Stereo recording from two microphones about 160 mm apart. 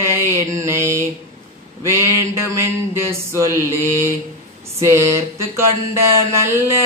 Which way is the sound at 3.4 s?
15° right (ahead or behind).